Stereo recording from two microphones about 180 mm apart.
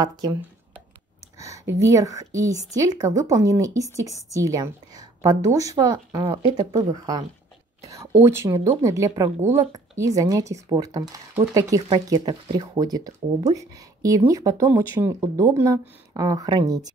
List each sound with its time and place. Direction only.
0.0 s speech: 20° right (ahead or behind)
1.4 s a sound: 15° right (ahead or behind)
1.8 s speech: 20° right (ahead or behind)